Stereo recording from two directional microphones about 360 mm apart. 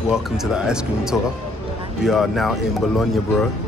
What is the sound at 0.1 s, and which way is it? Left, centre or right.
Speech, centre.